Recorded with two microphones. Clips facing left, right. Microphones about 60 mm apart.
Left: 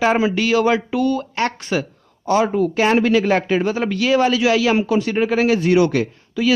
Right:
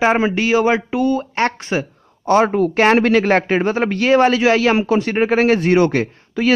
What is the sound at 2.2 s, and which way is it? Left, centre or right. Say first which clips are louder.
Speech: right 3 dB; right.